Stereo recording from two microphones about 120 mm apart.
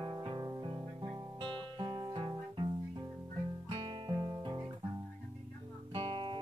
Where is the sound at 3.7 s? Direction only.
45° right (ahead or behind).